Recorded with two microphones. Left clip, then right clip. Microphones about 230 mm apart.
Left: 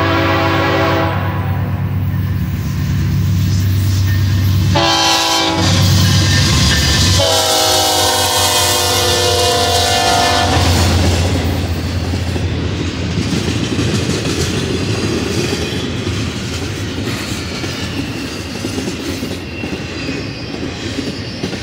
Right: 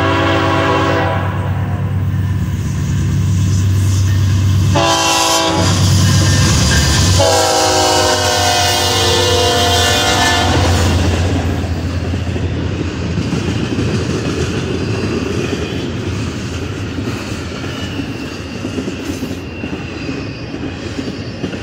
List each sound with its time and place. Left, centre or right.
4.7 s train: centre
7.2 s train: left